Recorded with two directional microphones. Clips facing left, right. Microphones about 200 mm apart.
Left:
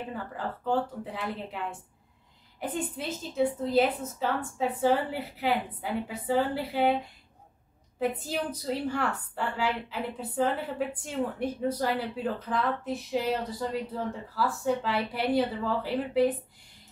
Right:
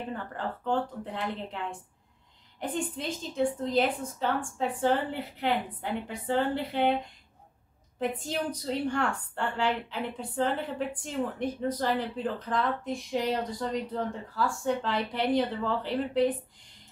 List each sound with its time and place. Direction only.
0.1 s a woman's voice: 5° left (ahead or behind)
2.6 s a woman's voice: 5° left (ahead or behind)
8.3 s a woman's voice: 5° left (ahead or behind)